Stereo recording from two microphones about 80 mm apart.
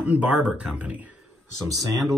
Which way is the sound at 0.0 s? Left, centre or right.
Centre.